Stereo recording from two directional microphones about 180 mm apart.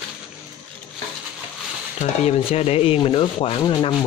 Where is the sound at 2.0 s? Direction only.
35° left (ahead or behind).